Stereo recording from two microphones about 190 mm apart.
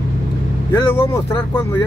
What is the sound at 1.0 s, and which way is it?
Speech, 10° left (ahead or behind).